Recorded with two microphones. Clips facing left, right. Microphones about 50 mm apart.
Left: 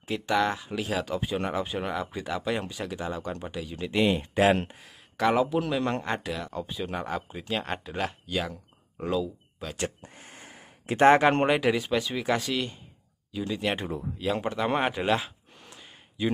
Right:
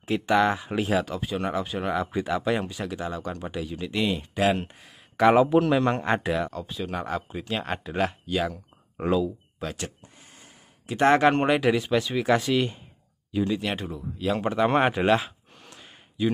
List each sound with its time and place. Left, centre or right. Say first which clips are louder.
0.0 s speech: right 4 dB; centre
1.1 s speech: right 1 dB; centre
1.9 s speech: right 5 dB; centre
3.9 s speech: left 3 dB; centre
4.6 s a sound: left 1 dB; centre
5.2 s speech: right 6 dB; centre
6.5 s speech: right 1 dB; centre
10.0 s a sound: left 4 dB; left
11.1 s speech: even; centre
13.6 s speech: left 1 dB; centre
15.6 s gasp: right 1 dB; centre